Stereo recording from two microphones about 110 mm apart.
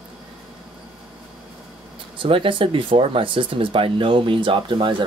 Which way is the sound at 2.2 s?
50° right (ahead or behind).